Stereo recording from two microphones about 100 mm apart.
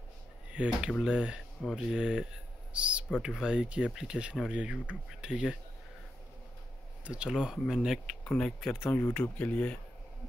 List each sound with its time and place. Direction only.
0.5 s speech: 10° right (ahead or behind)
7.1 s speech: 10° right (ahead or behind)
8.8 s speech: 20° left (ahead or behind)